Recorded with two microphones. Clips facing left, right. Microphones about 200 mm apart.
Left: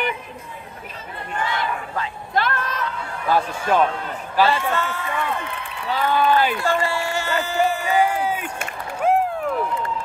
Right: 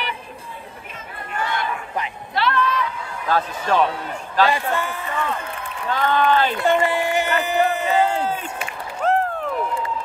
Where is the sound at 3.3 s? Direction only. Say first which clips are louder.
Left 1 dB; 10° left (ahead or behind).